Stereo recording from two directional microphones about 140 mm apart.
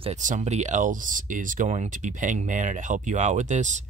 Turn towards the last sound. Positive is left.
turn(degrees=-60)  # may be behind; listen again after turning